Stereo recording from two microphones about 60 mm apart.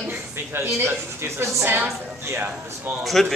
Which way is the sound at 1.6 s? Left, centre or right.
Right.